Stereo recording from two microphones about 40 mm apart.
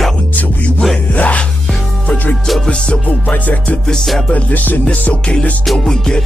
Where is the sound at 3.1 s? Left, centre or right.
Left.